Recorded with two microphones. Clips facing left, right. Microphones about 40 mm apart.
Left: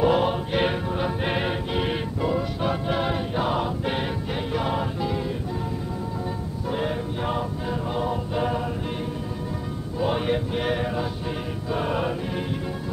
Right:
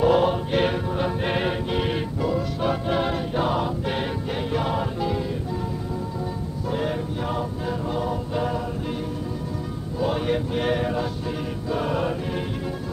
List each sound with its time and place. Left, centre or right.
0.0 s music: centre
6.7 s music: centre
9.9 s music: centre